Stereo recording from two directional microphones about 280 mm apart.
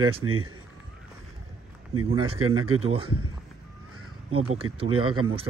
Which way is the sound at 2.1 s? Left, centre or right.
Centre.